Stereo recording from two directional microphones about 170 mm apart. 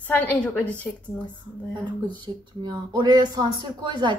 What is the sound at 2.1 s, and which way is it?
Speech, 25° right (ahead or behind).